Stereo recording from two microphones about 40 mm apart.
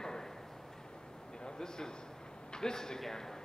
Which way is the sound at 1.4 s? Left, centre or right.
Centre.